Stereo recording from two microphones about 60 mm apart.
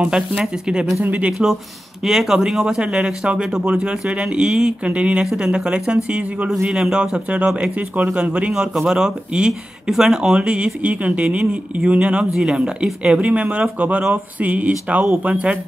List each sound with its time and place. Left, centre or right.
0.0 s speech: centre
1.0 s speech: right
2.0 s speech: centre
5.2 s speech: centre